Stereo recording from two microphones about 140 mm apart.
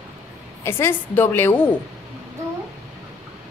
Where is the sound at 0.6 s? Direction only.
20° left (ahead or behind).